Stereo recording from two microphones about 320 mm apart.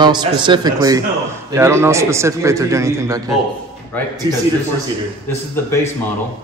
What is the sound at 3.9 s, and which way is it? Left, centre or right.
Speech, centre.